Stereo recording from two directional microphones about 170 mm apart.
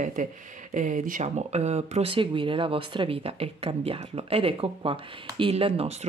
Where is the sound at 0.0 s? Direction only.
50° right (ahead or behind).